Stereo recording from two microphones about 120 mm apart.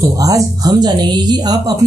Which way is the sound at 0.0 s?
30° right (ahead or behind).